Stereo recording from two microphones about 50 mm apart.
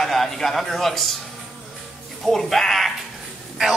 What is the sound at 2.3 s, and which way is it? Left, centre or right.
Speech, centre.